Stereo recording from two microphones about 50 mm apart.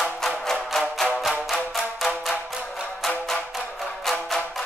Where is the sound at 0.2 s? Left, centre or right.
Centre.